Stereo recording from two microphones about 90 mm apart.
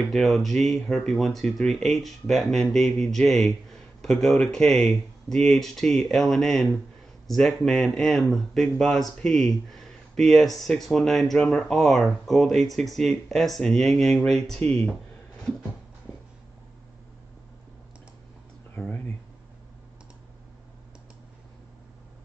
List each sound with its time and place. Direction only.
0.1 s speech: centre (ahead or behind)
18.8 s speech: 15° left (ahead or behind)